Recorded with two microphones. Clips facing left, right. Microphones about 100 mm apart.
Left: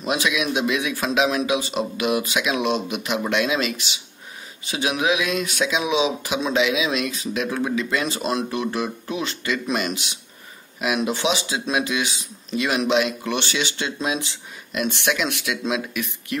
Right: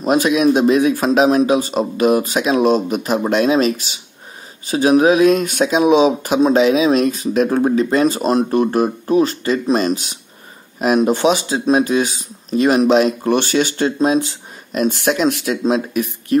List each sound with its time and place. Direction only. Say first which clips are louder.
0.0 s speech: right 9 dB; 40° right (ahead or behind)